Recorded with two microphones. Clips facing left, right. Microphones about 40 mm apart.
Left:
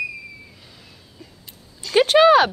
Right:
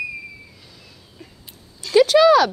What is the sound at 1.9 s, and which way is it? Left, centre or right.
Speech, left.